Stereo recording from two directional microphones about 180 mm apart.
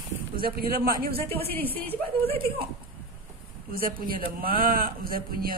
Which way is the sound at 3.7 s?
50° right (ahead or behind).